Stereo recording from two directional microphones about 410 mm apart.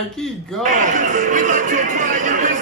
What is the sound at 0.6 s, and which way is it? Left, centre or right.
Speech, centre.